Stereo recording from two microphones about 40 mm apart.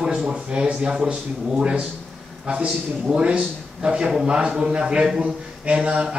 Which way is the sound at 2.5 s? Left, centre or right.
Right.